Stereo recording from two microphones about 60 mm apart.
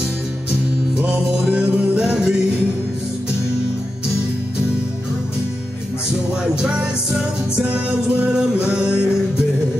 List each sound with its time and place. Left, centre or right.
1.5 s music: centre
6.4 s music: centre